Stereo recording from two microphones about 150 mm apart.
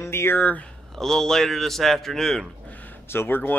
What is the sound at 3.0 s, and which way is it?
Speech, 15° left (ahead or behind).